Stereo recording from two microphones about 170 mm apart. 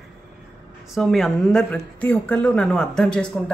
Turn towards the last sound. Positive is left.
turn(degrees=5)  # may be behind; listen again after turning